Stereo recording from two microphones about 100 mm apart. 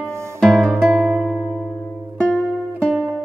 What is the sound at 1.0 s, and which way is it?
Music, 5° right (ahead or behind).